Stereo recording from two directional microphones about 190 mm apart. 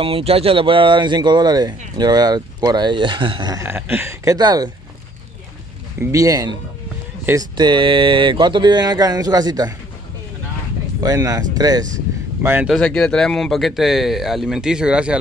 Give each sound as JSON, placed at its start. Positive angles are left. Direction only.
{"t": 0.0, "sound": "speech", "side_deg": -30}
{"t": 5.9, "sound": "speech", "side_deg": -15}
{"t": 11.0, "sound": "speech", "side_deg": -20}
{"t": 12.4, "sound": "speech", "side_deg": -5}